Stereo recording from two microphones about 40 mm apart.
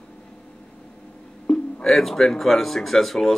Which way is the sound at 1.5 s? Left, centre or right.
Left.